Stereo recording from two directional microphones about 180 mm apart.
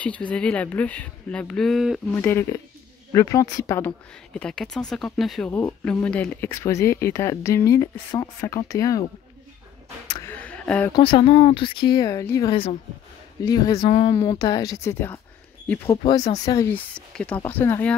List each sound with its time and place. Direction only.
0.0 s speech: 5° left (ahead or behind)
2.1 s speech: 10° left (ahead or behind)
4.3 s speech: 5° left (ahead or behind)
5.5 s speech: 10° left (ahead or behind)
10.2 s a sound: 10° left (ahead or behind)
10.9 s speech: 25° left (ahead or behind); by 17.9 s 10° left (ahead or behind)